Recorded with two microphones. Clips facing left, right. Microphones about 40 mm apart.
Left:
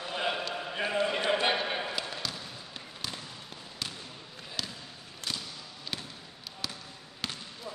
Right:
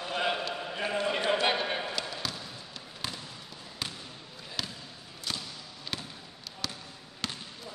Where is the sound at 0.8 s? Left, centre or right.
Centre.